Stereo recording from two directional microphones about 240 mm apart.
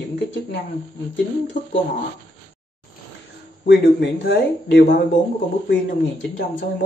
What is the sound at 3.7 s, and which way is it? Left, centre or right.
Speech, left.